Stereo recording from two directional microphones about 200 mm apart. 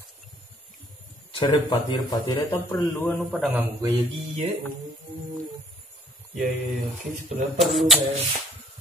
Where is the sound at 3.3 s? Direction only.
5° right (ahead or behind).